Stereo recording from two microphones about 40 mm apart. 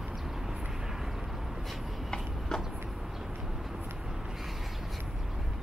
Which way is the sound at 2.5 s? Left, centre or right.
Centre.